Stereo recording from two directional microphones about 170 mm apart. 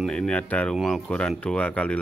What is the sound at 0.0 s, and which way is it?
Speech, 5° left (ahead or behind).